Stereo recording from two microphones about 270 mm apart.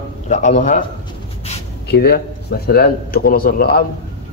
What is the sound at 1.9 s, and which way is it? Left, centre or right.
Speech, left.